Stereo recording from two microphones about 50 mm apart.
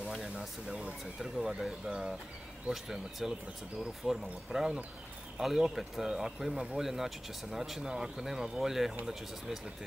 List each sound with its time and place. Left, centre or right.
0.2 s speech: centre
6.5 s speech: centre
6.8 s speech: centre